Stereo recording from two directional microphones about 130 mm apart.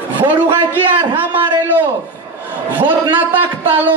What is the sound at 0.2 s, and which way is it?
A man's voice, 40° right (ahead or behind).